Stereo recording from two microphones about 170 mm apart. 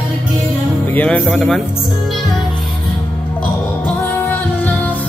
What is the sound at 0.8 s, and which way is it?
Music, 10° left (ahead or behind).